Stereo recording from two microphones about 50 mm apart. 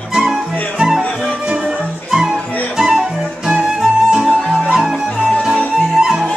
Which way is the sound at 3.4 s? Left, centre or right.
Centre.